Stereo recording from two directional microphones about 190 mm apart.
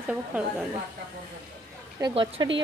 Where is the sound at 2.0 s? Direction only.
25° right (ahead or behind).